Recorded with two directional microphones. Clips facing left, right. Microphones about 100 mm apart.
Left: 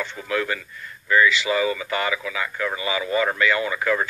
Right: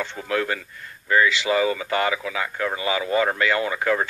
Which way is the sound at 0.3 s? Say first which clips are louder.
Right 1 dB; 45° right (ahead or behind).